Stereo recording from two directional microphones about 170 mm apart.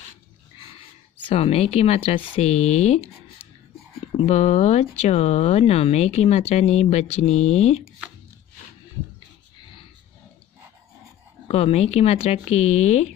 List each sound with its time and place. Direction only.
1.3 s speech: 35° left (ahead or behind)
11.4 s speech: 35° left (ahead or behind)